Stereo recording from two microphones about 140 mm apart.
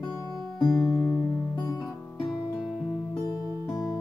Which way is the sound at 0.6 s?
30° left (ahead or behind).